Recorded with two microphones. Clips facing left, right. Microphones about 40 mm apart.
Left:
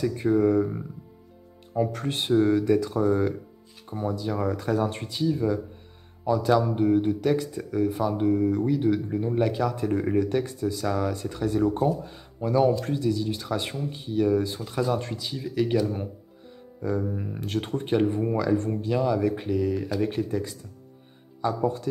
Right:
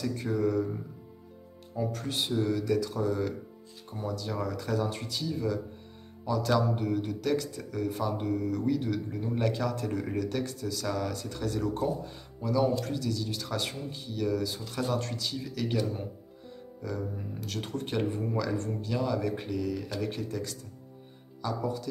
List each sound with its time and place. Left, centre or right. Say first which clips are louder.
0.0 s a man's voice: left 7 dB; centre
1.8 s speech: left 5 dB; left
3.9 s a man's voice: left 6 dB; left
4.5 s speech: left 6 dB; left
5.1 s a man's voice: left 9 dB; centre
12.4 s a man's voice: left 5 dB; left; by 15.8 s centre
17.1 s speech: left 6 dB; left
17.4 s speech: left 6 dB; left
17.8 s a man's voice: left 8 dB; left